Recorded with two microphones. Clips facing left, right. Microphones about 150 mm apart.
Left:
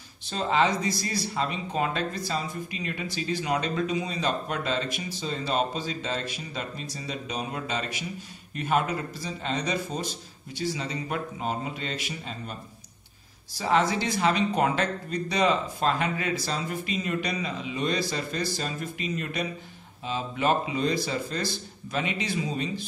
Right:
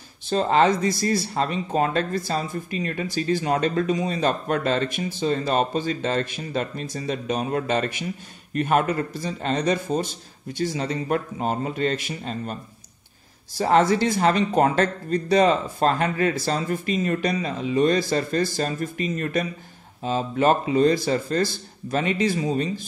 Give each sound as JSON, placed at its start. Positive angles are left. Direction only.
{"t": 0.3, "sound": "speech", "side_deg": -50}
{"t": 13.6, "sound": "speech", "side_deg": -50}